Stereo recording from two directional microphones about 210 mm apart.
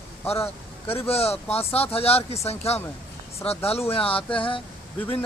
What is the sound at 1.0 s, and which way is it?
Speech, 30° left (ahead or behind).